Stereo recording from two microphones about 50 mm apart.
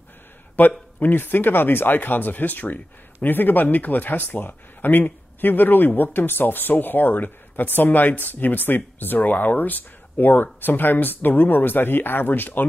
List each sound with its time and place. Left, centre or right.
0.6 s speech: left